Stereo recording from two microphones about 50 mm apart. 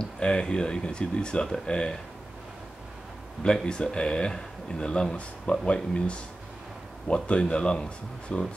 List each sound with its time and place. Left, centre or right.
0.0 s speech: centre
3.4 s speech: centre